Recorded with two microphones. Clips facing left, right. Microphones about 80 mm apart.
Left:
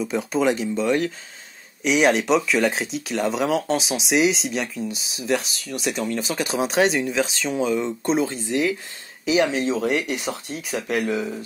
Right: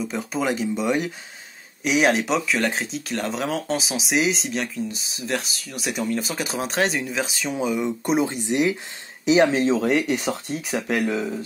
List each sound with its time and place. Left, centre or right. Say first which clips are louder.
0.0 s speech: left 4 dB; centre; by 9.5 s right
9.5 s speech: right 2 dB; right